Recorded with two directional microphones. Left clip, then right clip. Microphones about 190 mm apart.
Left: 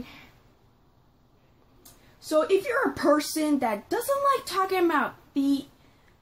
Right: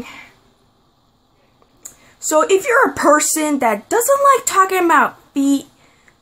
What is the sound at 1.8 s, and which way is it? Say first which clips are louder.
A woman's voice: right 17 dB; 45° right (ahead or behind).